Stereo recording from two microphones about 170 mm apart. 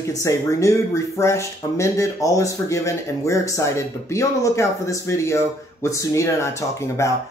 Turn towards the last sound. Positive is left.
turn(degrees=20)  # may be behind; listen again after turning